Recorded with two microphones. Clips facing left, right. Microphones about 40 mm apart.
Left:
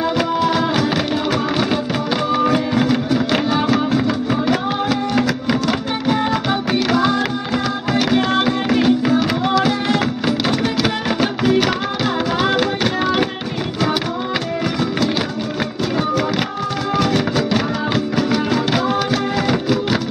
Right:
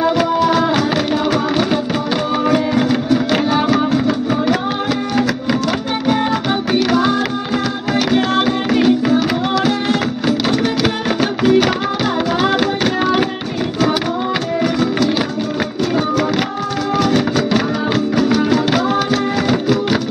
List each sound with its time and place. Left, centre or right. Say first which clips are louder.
0.0 s music: right 3 dB; centre
16.9 s music: right 2 dB; centre